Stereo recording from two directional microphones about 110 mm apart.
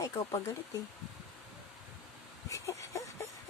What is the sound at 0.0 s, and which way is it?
Speech, 30° left (ahead or behind).